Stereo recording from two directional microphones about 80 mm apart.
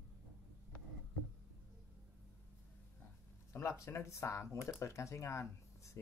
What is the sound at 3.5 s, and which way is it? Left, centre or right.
Speech, left.